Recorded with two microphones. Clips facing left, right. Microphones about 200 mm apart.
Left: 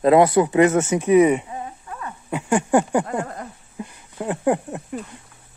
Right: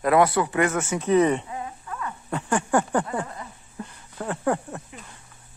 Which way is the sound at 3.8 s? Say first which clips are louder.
Left 4 dB; 15° left (ahead or behind).